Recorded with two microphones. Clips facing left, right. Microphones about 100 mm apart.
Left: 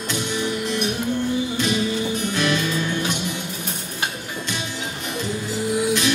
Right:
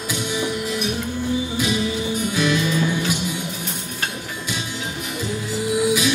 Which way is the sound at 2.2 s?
5° right (ahead or behind).